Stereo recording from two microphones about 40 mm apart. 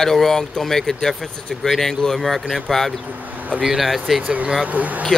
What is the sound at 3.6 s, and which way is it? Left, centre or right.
Speech, centre.